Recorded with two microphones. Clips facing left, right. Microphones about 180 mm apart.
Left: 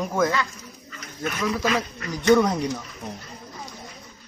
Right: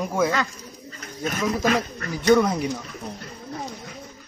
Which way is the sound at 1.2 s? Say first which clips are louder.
Right 1 dB; 45° right (ahead or behind).